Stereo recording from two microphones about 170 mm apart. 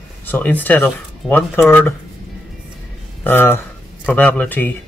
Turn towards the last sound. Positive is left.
turn(degrees=10)  # may be behind; listen again after turning